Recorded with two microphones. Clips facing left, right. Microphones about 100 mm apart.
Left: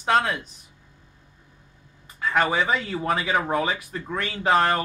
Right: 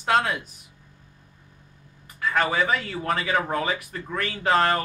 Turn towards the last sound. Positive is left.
turn(degrees=10)  # may be behind; listen again after turning